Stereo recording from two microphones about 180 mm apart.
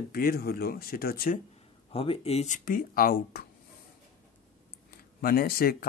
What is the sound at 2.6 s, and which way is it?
Speech, 50° left (ahead or behind).